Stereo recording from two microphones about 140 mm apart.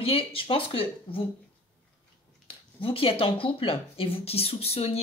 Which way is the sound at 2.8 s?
40° left (ahead or behind).